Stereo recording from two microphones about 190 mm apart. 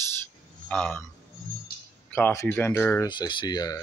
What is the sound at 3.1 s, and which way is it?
Speech, 25° left (ahead or behind).